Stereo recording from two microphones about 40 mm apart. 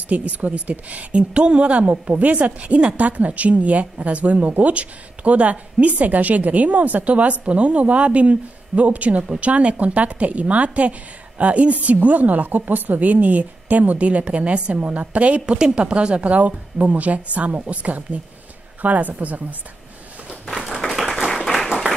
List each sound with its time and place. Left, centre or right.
0.1 s a woman's voice: right
3.0 s a woman's voice: right
20.9 s clapping: centre